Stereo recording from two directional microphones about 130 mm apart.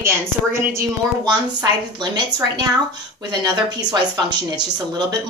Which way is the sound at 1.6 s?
30° right (ahead or behind).